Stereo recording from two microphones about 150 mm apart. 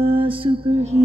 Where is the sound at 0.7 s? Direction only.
45° right (ahead or behind).